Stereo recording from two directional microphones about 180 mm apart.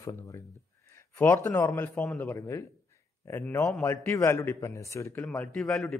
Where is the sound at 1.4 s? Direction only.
15° left (ahead or behind).